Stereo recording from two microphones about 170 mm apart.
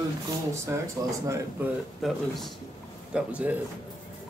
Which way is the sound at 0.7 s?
15° right (ahead or behind).